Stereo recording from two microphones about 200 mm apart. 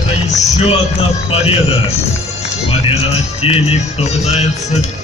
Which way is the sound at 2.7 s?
30° left (ahead or behind).